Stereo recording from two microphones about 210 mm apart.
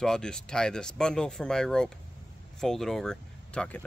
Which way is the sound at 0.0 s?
5° left (ahead or behind).